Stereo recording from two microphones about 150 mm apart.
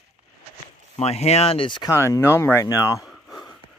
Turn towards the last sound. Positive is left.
turn(degrees=0)  # may be behind; listen again after turning